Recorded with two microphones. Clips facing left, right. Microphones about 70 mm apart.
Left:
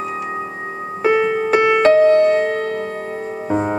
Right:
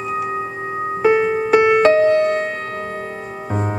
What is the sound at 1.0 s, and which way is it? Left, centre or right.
Music, left.